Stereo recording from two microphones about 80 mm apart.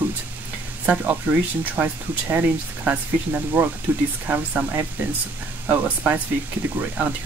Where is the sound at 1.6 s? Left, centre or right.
Right.